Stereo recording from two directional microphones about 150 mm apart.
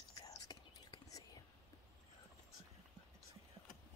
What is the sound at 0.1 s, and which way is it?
Whispering, 25° left (ahead or behind).